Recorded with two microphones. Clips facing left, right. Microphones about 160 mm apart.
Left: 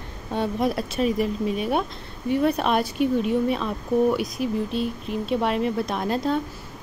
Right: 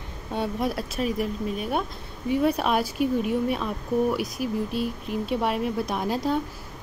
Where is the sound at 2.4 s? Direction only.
10° right (ahead or behind).